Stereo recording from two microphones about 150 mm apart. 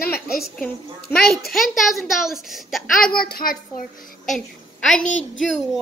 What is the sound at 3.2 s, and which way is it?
A child's voice, 80° left.